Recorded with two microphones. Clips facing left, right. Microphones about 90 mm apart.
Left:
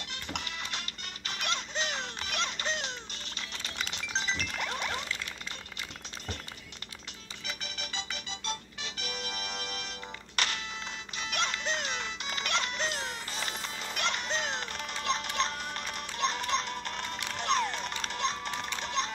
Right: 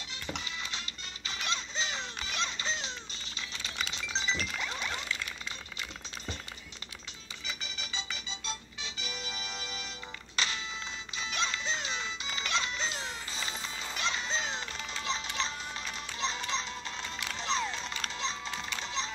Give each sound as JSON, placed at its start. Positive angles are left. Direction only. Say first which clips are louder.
{"t": 0.1, "sound": "music", "louder": "even", "side_deg": 60}
{"t": 7.4, "sound": "music", "louder": "left 1 dB", "side_deg": 60}